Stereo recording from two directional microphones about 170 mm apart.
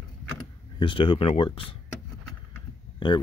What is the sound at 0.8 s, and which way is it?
Speech, 30° left (ahead or behind).